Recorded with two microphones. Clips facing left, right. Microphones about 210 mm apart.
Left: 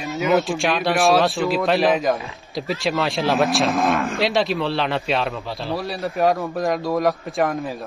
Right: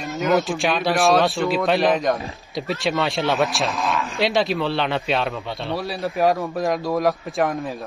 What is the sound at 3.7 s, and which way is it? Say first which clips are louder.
Speech: left 5 dB; 55° left (ahead or behind).